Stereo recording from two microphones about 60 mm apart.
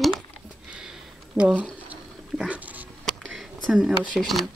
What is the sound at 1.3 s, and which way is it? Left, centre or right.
Speech, centre.